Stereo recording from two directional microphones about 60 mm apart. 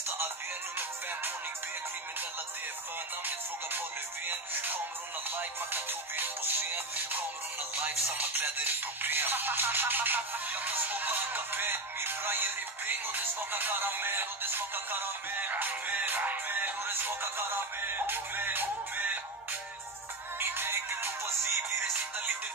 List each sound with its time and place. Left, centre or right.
4.3 s music: right
20.3 s music: right